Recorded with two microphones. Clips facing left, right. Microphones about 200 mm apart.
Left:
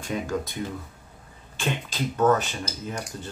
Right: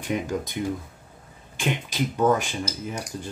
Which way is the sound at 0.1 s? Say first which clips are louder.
Right 1 dB; 20° right (ahead or behind).